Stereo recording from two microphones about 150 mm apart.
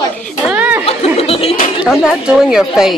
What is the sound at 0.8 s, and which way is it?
Chatter, 40° left (ahead or behind).